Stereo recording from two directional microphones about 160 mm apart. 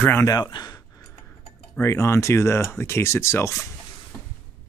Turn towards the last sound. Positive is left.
turn(degrees=15)  # may be behind; listen again after turning